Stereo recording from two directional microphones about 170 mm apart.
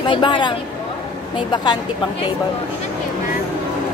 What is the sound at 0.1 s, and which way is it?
Speech, 30° left (ahead or behind).